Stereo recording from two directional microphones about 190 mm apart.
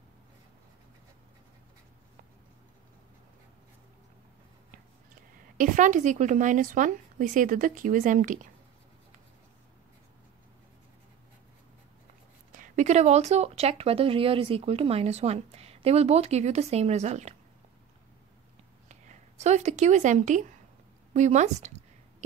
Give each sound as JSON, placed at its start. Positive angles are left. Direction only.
{"t": 4.6, "sound": "a woman's voice", "side_deg": -45}
{"t": 12.5, "sound": "speech", "side_deg": -40}
{"t": 18.9, "sound": "speech", "side_deg": -35}